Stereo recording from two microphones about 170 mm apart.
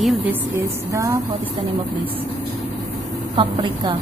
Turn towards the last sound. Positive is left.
turn(degrees=-30)  # may be behind; listen again after turning